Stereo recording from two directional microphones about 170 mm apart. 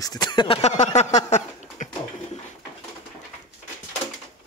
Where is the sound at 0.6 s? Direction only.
45° left (ahead or behind).